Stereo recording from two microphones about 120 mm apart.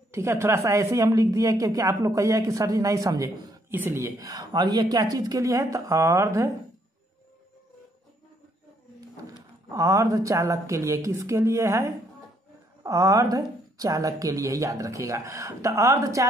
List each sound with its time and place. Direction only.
0.1 s a woman's voice: 20° right (ahead or behind)
9.7 s a woman's voice: 30° right (ahead or behind)